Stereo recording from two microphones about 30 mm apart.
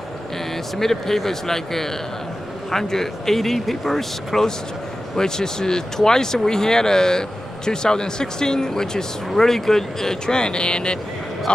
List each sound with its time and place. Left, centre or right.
0.7 s speech: centre
5.1 s speech: left
10.2 s speech: left